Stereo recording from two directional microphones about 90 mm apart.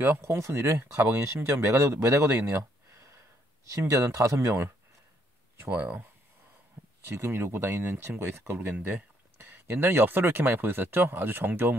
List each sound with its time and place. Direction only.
0.0 s speech: 30° right (ahead or behind)
2.3 s a sound: 30° right (ahead or behind)
3.7 s speech: 35° right (ahead or behind)
5.7 s speech: 20° right (ahead or behind)
6.8 s a sound: 25° right (ahead or behind)
7.2 s speech: 30° right (ahead or behind)